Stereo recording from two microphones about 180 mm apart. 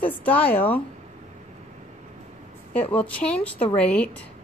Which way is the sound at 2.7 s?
10° left (ahead or behind).